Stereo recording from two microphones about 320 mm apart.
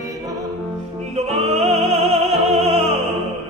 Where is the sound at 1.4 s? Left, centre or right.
Centre.